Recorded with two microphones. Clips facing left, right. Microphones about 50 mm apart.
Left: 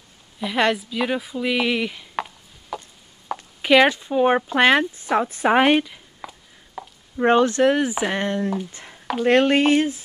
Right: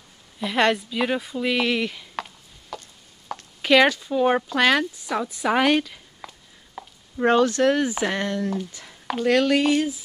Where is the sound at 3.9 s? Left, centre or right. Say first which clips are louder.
Left 2 dB; left.